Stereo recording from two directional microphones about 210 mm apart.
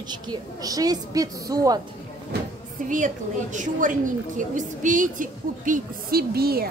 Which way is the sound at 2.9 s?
35° right (ahead or behind).